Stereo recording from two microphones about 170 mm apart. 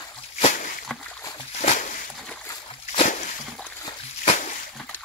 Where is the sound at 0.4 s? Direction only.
45° left (ahead or behind).